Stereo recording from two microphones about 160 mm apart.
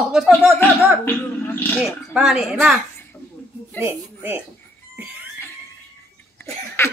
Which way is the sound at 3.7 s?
15° right (ahead or behind).